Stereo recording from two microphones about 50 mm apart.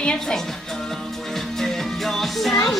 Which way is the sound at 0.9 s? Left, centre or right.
Centre.